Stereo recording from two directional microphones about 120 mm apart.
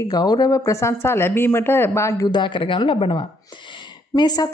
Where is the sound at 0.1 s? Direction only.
35° left (ahead or behind).